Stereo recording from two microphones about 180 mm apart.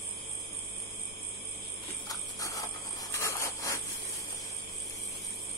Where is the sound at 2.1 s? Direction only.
20° left (ahead or behind).